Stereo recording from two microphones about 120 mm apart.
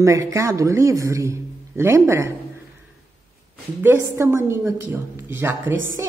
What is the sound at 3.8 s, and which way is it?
A woman's voice, 20° right (ahead or behind).